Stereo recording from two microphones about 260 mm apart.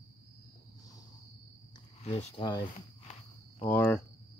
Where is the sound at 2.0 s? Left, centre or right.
Centre.